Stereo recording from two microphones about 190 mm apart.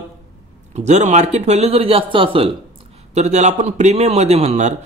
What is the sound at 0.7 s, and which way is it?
A man's voice, 35° right (ahead or behind).